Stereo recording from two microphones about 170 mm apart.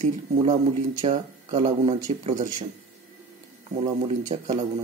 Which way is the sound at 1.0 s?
35° right (ahead or behind).